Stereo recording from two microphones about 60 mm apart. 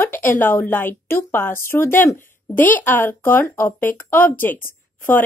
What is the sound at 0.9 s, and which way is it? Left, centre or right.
A woman's voice, left.